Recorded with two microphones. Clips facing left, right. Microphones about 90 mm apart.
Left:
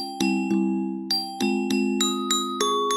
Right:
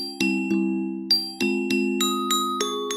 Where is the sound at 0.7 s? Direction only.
30° left (ahead or behind).